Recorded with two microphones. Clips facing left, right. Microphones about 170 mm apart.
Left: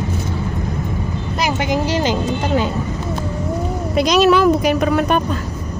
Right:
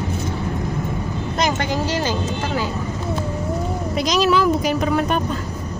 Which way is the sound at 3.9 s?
60° left (ahead or behind).